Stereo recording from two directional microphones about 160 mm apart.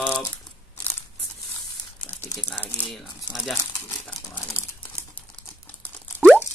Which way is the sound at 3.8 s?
10° left (ahead or behind).